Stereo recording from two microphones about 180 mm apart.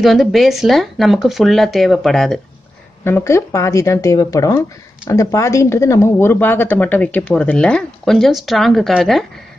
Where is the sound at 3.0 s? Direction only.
15° left (ahead or behind).